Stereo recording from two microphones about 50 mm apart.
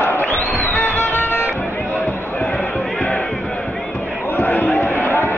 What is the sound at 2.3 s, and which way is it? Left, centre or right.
Music, left.